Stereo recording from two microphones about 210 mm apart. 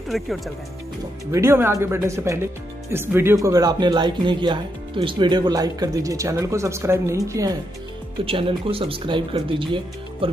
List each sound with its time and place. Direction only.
0.1 s speech: centre (ahead or behind)
1.3 s speech: 10° right (ahead or behind)
8.3 s speech: 25° right (ahead or behind)